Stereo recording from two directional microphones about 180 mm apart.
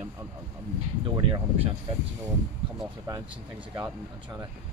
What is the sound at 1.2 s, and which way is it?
Speech, 30° right (ahead or behind).